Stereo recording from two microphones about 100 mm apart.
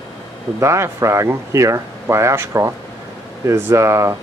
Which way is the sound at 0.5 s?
25° right (ahead or behind).